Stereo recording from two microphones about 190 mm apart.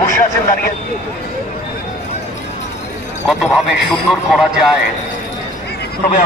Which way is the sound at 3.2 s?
Centre (ahead or behind).